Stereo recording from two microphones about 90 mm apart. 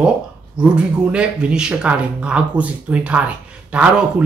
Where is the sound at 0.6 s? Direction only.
10° right (ahead or behind).